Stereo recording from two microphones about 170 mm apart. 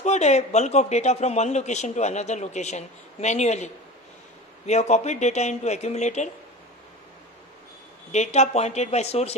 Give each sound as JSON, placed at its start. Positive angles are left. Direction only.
{"t": 0.0, "sound": "speech", "side_deg": 40}
{"t": 8.1, "sound": "speech", "side_deg": 40}